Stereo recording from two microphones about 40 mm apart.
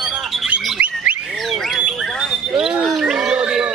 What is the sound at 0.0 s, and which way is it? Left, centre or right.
Bird, centre.